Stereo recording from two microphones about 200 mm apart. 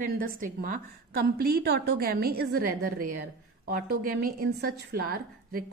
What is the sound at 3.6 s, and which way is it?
A woman's voice, 45° right (ahead or behind).